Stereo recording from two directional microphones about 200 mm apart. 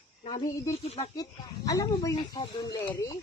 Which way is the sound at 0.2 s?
25° left (ahead or behind).